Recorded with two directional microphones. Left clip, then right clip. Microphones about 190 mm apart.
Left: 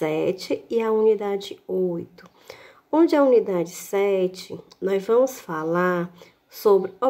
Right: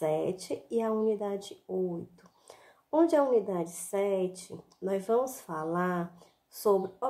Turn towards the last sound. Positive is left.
turn(degrees=15)  # may be behind; listen again after turning